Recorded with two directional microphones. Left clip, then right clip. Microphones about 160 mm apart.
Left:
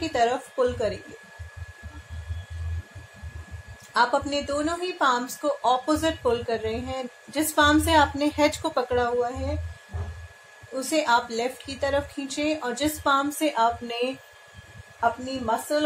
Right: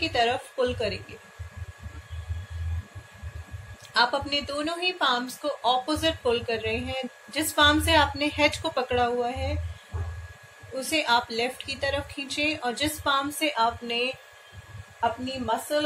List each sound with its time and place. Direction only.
0.0 s a woman's voice: 30° left (ahead or behind)
3.9 s a woman's voice: 30° left (ahead or behind)
10.8 s a woman's voice: 30° left (ahead or behind)